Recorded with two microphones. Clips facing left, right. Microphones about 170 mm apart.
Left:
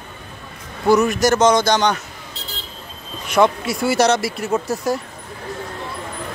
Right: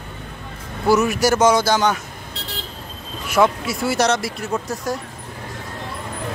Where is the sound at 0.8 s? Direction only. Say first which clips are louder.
Left 2 dB; 5° right (ahead or behind).